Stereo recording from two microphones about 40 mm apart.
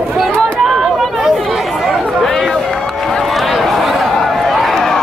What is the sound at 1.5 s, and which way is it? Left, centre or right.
Chatter, centre.